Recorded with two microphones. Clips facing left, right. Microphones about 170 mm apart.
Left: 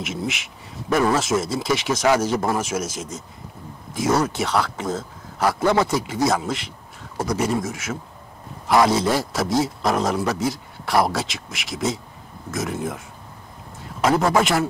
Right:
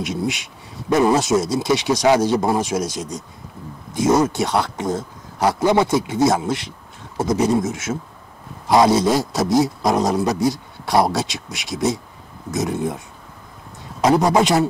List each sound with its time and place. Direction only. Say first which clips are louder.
0.8 s a man's voice: right 4 dB; 20° right (ahead or behind)
14.0 s a man's voice: right 3 dB; 20° right (ahead or behind)